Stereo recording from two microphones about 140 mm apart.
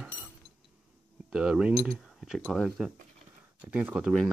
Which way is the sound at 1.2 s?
5° right (ahead or behind).